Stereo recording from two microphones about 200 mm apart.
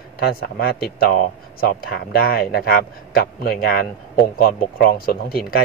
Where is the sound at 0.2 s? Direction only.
50° left (ahead or behind).